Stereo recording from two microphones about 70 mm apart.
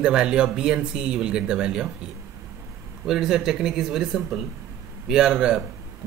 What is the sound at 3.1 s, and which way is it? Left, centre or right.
Speech, centre.